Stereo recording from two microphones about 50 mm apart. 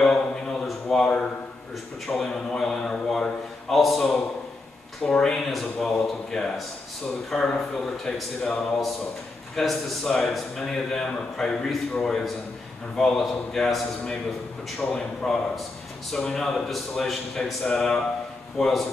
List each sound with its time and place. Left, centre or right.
0.0 s a sound: centre
2.1 s a man's voice: centre
5.0 s a man's voice: centre
5.5 s a man's voice: centre
9.6 s a man's voice: centre